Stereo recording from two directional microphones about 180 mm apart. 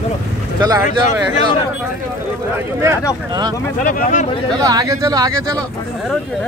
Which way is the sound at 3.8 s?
45° left (ahead or behind).